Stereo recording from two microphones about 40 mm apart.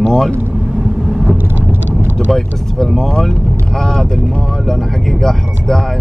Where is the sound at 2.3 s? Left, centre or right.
Centre.